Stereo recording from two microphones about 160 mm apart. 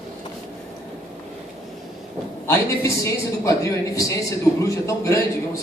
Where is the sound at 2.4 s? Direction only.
15° left (ahead or behind).